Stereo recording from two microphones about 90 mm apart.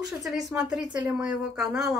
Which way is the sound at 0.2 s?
5° right (ahead or behind).